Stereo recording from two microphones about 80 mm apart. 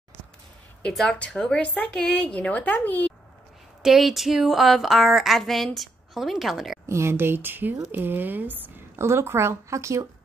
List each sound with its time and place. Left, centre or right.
0.8 s a woman's voice: centre
3.8 s a woman's voice: centre
6.9 s speech: right